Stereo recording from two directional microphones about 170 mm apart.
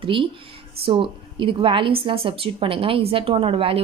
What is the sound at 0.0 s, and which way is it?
Speech, 30° right (ahead or behind).